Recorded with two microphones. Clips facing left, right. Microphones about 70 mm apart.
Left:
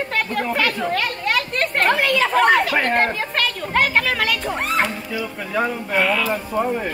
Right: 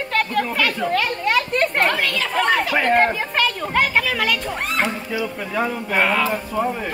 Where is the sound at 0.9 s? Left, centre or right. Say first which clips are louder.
Right 2 dB; centre.